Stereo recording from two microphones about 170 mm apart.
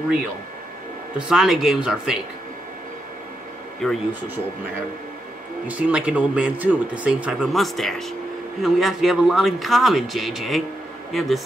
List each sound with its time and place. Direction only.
1.1 s speech: 5° right (ahead or behind)
3.8 s speech: centre (ahead or behind)
5.7 s speech: 5° right (ahead or behind)